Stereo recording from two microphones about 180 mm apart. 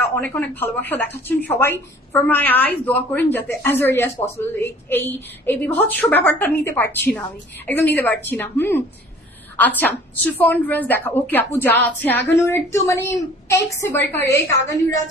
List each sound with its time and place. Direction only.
0.0 s a woman's voice: 10° left (ahead or behind)